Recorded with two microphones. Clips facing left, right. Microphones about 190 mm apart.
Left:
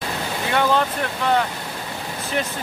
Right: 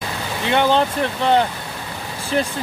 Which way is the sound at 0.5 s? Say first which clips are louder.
Right 3 dB; 25° right (ahead or behind).